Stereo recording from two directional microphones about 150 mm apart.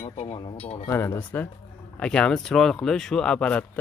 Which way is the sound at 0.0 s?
45° left (ahead or behind).